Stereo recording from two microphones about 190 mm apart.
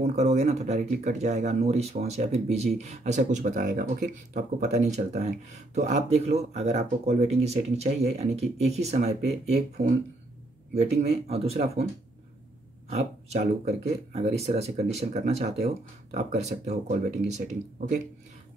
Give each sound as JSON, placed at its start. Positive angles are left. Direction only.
{"t": 0.0, "sound": "speech", "side_deg": -35}
{"t": 10.7, "sound": "speech", "side_deg": -35}
{"t": 13.7, "sound": "speech", "side_deg": -35}